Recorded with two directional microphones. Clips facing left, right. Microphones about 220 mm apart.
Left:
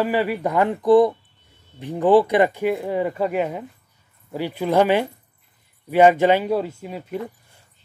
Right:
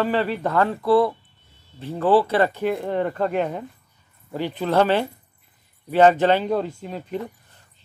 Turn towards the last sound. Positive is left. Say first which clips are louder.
# even
turn(degrees=10)  # may be behind; listen again after turning